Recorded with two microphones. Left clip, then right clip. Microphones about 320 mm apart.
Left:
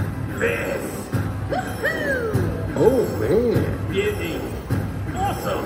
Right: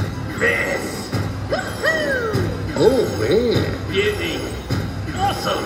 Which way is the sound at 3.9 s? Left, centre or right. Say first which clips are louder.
Right 4 dB; right.